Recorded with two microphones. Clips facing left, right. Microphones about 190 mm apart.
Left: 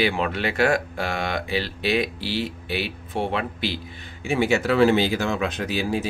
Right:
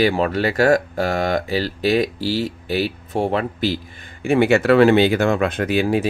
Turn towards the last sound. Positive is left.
turn(degrees=-60)  # may be behind; listen again after turning